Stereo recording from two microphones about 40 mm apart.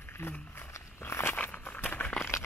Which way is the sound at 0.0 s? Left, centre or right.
Left.